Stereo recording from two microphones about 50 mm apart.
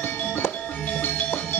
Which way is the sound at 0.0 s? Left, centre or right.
Left.